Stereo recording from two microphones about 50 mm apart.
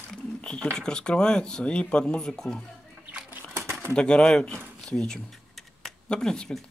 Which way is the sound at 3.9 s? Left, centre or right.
Centre.